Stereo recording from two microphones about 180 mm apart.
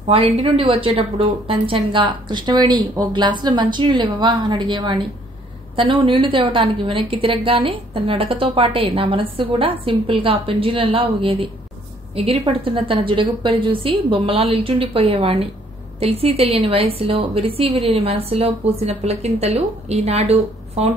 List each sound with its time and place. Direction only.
0.1 s a woman's voice: 35° right (ahead or behind)